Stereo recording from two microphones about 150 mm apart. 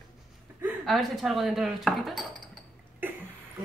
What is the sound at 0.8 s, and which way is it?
Speech, centre (ahead or behind).